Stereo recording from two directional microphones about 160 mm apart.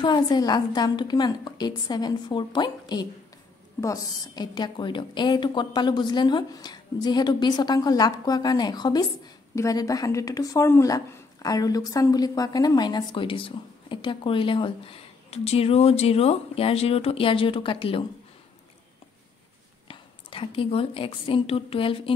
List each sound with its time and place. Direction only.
0.0 s a woman's voice: 25° left (ahead or behind)
19.9 s a woman's voice: 35° left (ahead or behind)